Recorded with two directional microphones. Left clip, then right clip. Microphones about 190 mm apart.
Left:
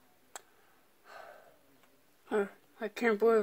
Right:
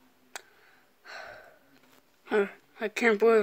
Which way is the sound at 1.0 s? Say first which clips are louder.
Right 7 dB; 15° right (ahead or behind).